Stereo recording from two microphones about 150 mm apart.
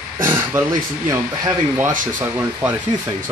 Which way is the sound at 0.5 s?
15° right (ahead or behind).